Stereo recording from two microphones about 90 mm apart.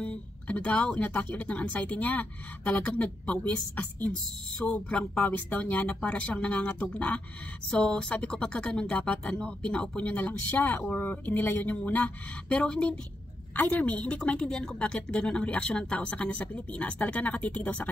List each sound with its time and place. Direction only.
0.0 s a woman's voice: 15° left (ahead or behind)